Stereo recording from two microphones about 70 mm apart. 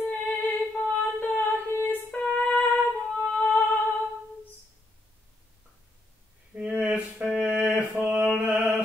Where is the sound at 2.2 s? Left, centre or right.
Centre.